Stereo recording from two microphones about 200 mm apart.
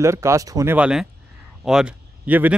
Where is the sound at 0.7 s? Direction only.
5° right (ahead or behind).